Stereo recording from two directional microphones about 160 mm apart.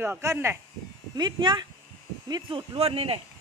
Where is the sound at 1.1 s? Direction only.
30° right (ahead or behind).